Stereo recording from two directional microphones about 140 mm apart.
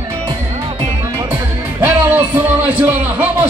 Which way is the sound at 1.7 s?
15° right (ahead or behind).